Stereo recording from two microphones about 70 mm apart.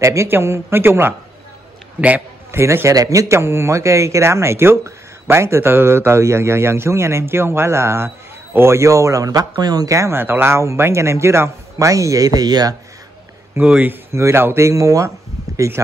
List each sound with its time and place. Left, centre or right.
0.0 s a man's voice: right
2.0 s a man's voice: centre
2.5 s a man's voice: right
2.9 s a man's voice: right
9.9 s a man's voice: right
10.2 s a man's voice: right
13.6 s a man's voice: right